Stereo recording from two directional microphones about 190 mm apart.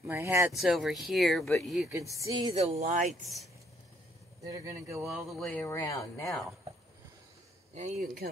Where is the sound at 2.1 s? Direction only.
20° right (ahead or behind).